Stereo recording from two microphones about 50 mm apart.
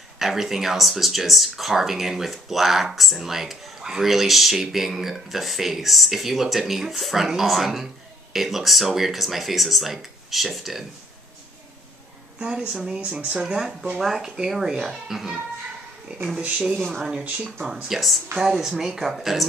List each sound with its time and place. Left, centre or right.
0.2 s speech: centre
12.4 s speech: centre
16.4 s speech: right
17.8 s speech: centre